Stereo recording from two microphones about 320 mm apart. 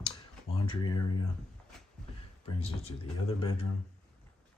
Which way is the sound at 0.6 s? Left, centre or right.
Centre.